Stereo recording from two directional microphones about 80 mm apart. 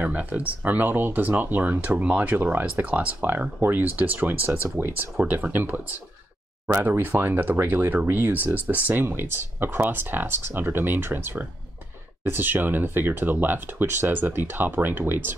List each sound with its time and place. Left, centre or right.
0.0 s speech: centre